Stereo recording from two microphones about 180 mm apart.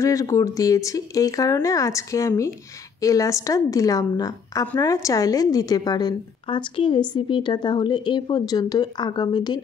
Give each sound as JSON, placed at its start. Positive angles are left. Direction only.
{"t": 0.0, "sound": "a woman's voice", "side_deg": 15}